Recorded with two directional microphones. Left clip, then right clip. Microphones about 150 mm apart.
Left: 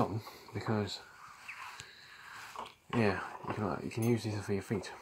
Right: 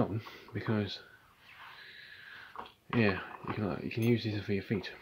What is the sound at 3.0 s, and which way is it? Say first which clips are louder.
Speech: right 1 dB; 30° right (ahead or behind).